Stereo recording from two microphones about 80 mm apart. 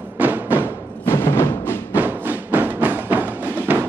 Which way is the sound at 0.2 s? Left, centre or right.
Right.